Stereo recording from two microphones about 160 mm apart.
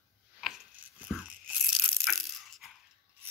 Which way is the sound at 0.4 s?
5° right (ahead or behind).